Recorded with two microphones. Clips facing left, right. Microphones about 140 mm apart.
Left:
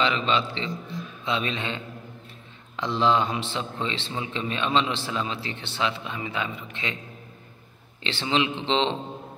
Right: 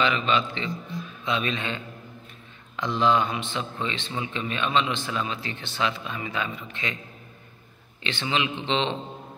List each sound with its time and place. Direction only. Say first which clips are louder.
0.0 s a man's voice: even; 30° left (ahead or behind)
8.0 s a man's voice: left 2 dB; 30° left (ahead or behind)